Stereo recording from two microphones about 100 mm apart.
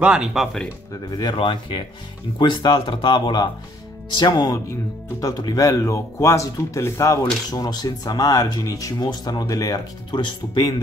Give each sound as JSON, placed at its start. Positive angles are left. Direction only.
{"t": 0.0, "sound": "speech", "side_deg": -10}
{"t": 1.4, "sound": "speech", "side_deg": 60}
{"t": 5.2, "sound": "speech", "side_deg": 35}